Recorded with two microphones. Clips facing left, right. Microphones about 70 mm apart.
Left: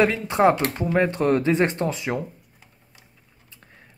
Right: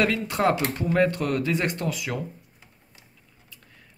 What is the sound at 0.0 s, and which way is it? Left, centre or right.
Speech, left.